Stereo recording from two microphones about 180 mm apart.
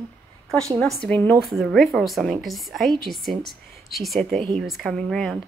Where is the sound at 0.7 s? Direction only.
5° left (ahead or behind).